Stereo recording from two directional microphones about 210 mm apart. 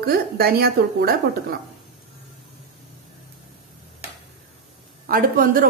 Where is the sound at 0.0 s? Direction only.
45° right (ahead or behind).